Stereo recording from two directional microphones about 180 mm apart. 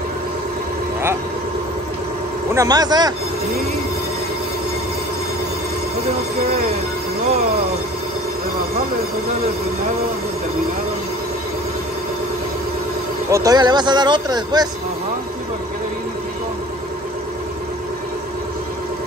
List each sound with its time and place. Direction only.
2.5 s speech: 20° right (ahead or behind)
13.3 s speech: 20° right (ahead or behind)